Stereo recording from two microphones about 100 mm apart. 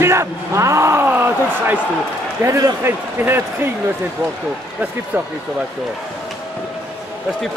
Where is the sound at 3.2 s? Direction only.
20° right (ahead or behind).